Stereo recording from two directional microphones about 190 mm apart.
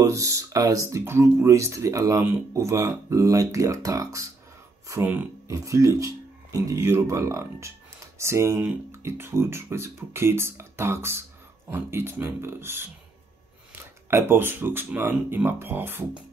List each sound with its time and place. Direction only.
0.0 s speech: 15° right (ahead or behind)
14.1 s speech: 10° right (ahead or behind)